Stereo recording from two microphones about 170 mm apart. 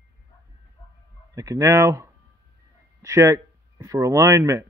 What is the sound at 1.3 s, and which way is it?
Speech, 20° right (ahead or behind).